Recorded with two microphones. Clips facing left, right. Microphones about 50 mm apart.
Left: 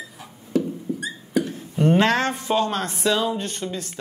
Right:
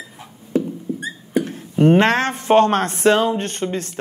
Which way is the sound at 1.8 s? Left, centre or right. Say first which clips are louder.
Right 4 dB; right.